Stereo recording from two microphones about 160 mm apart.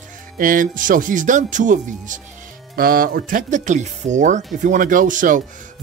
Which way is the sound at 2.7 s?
65° right (ahead or behind).